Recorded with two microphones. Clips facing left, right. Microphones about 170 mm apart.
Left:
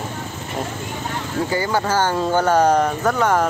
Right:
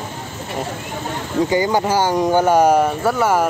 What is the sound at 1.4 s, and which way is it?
Speech, 15° right (ahead or behind).